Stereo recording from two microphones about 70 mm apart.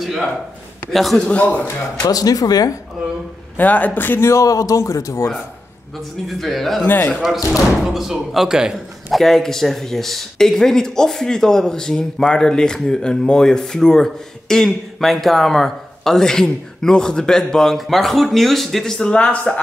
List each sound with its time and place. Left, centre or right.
0.0 s speech: centre
1.3 s speech: centre
2.0 s speech: left
3.5 s speech: left
4.2 s a man's voice: left
6.2 s speech: centre
6.8 s speech: left
7.8 s speech: centre
9.2 s speech: centre